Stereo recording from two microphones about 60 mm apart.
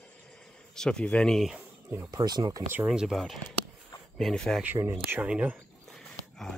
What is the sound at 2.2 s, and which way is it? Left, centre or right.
Speech, right.